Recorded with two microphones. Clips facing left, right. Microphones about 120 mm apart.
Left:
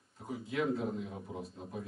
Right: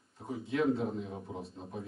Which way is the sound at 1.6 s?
30° right (ahead or behind).